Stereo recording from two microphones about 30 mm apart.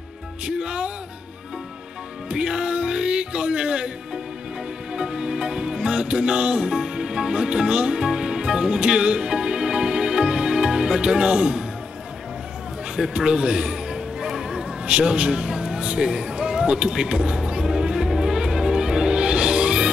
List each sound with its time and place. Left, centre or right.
0.5 s speech: right
2.2 s music: right
6.0 s speech: right
6.7 s speech: right
8.8 s music: right
13.1 s a man's voice: right
14.2 s music: centre
14.9 s speech: right
15.4 s a sound: centre
16.9 s a man's voice: right
17.6 s music: centre